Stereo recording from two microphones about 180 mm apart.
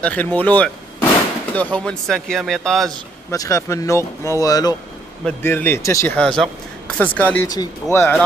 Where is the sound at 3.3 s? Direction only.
20° left (ahead or behind).